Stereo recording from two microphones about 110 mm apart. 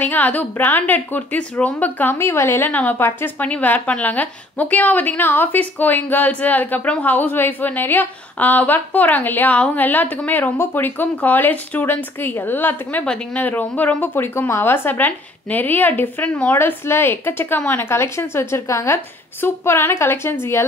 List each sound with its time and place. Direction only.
0.0 s a woman's voice: 15° left (ahead or behind)